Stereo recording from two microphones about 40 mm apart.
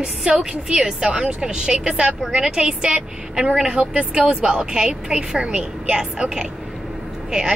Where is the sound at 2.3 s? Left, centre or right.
Centre.